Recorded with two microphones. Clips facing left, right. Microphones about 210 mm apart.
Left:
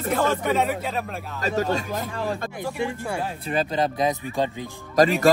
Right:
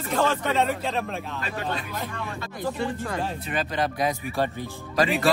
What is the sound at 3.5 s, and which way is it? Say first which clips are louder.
Speech: left 6 dB; 30° left (ahead or behind).